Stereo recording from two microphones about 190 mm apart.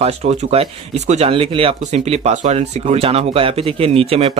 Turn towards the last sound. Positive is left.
turn(degrees=-30)  # may be behind; listen again after turning